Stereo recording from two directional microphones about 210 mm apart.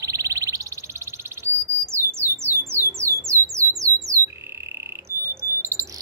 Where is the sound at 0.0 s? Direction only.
15° right (ahead or behind).